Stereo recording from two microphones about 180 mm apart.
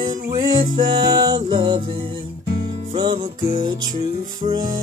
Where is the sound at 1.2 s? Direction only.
25° right (ahead or behind).